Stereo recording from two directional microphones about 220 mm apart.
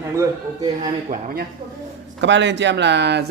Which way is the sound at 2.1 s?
55° right (ahead or behind).